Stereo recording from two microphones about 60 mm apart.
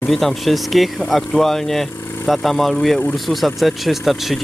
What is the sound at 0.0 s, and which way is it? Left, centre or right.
Speech, centre.